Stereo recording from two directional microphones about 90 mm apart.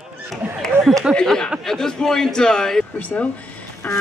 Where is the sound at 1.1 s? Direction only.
5° left (ahead or behind).